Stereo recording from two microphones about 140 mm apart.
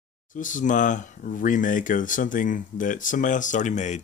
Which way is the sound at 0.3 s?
65° left (ahead or behind).